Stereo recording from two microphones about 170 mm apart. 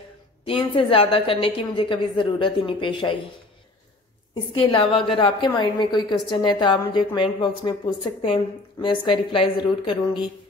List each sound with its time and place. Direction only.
0.5 s a woman's voice: 30° left (ahead or behind)
4.5 s a woman's voice: 30° left (ahead or behind)
8.8 s a woman's voice: 30° left (ahead or behind)